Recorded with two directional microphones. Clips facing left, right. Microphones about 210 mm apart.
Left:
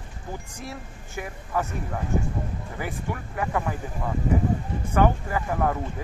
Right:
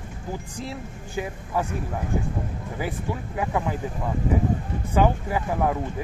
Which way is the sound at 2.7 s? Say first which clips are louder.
Right 3 dB; 15° right (ahead or behind).